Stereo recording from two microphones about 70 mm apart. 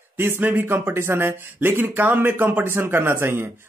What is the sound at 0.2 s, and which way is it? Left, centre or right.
Speech, right.